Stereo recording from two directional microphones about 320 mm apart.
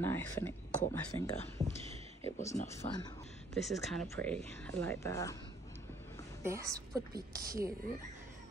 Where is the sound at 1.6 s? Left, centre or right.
Centre.